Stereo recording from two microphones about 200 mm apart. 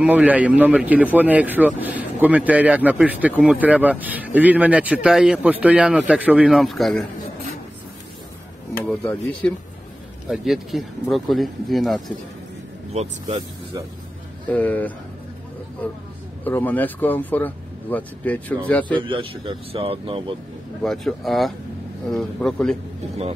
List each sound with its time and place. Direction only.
0.0 s a man's voice: 10° right (ahead or behind)
8.7 s speech: 10° left (ahead or behind)
12.9 s speech: 35° right (ahead or behind)
14.5 s speech: 10° left (ahead or behind)
16.4 s speech: 10° left (ahead or behind)
19.0 s speech: 25° right (ahead or behind)
20.8 s speech: centre (ahead or behind)